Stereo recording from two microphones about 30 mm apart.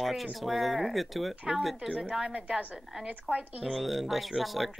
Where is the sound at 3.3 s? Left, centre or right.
Centre.